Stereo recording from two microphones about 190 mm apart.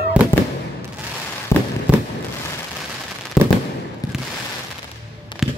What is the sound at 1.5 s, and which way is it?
Fireworks, 15° left (ahead or behind).